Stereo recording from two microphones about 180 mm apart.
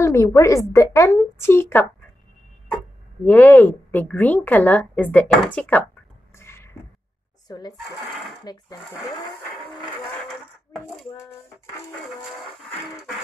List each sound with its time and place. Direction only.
0.0 s a woman's voice: 15° left (ahead or behind)
3.3 s a woman's voice: 10° left (ahead or behind)
6.3 s a sound: 15° left (ahead or behind)
7.4 s speech: 20° left (ahead or behind)